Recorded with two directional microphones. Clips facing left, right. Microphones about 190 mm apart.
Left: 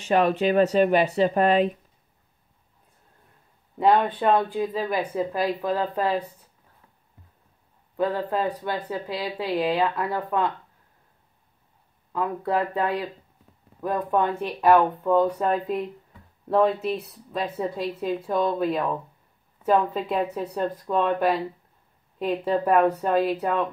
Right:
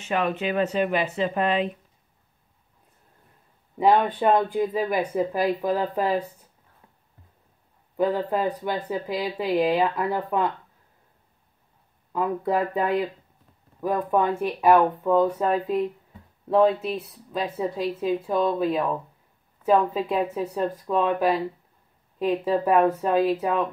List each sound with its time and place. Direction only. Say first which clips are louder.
0.0 s speech: left 5 dB; 35° left (ahead or behind)
3.7 s speech: even; 5° right (ahead or behind)
8.0 s speech: right 1 dB; 10° right (ahead or behind)
12.1 s speech: right 1 dB; 10° right (ahead or behind)